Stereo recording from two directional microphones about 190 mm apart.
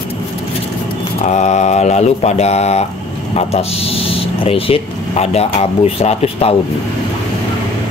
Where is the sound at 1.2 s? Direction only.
35° left (ahead or behind).